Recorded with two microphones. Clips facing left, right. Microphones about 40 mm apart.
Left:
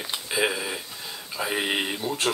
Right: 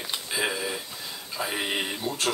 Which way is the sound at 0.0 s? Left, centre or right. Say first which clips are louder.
Left 3 dB; centre.